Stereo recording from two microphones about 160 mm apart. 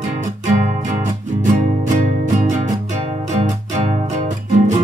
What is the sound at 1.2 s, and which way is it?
Music, 50° right (ahead or behind).